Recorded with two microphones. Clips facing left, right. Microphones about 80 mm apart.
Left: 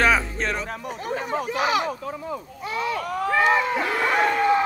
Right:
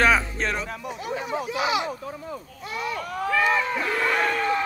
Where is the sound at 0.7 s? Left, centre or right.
Left.